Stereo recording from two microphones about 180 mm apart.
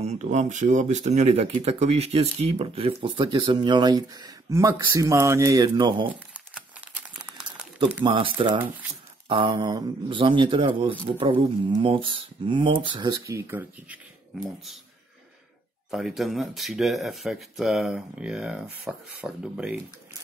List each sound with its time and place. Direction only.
0.0 s speech: 40° right (ahead or behind)
6.1 s crumpling: 5° right (ahead or behind)
8.0 s speech: 25° right (ahead or behind)
9.3 s speech: 25° right (ahead or behind); by 13.9 s 10° right (ahead or behind)
15.9 s speech: centre (ahead or behind)